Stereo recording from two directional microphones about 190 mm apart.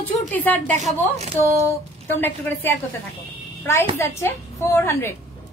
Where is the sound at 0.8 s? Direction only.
35° right (ahead or behind).